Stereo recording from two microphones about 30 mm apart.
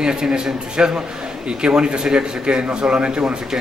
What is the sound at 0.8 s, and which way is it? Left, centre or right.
A man's voice, right.